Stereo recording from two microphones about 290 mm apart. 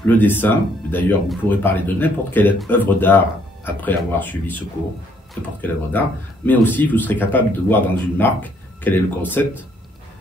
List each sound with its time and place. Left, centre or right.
0.0 s speech: centre